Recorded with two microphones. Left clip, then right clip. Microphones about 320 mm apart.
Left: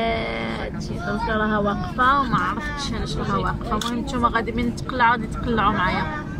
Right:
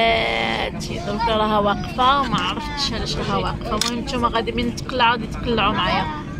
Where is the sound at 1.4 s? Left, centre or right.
Right.